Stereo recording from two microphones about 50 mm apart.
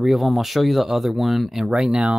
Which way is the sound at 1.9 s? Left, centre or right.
Right.